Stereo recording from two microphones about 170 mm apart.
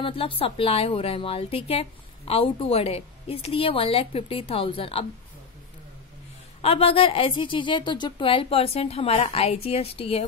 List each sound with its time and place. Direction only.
0.0 s speech: 35° left (ahead or behind)
6.6 s speech: 35° left (ahead or behind)